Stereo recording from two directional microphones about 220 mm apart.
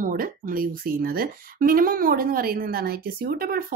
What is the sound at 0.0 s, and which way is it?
Speech, 40° right (ahead or behind).